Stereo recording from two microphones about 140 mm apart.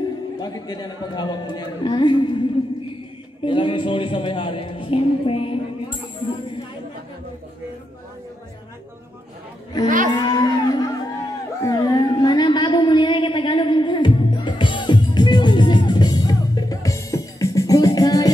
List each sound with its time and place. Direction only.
0.4 s a man's voice: 30° left (ahead or behind)
3.4 s a man's voice: 35° left (ahead or behind)
9.8 s speech: 70° right (ahead or behind)
10.1 s music: 30° left (ahead or behind)
11.6 s a sound: 30° left (ahead or behind)